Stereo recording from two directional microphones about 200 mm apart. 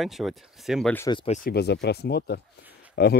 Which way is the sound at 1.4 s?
55° left (ahead or behind).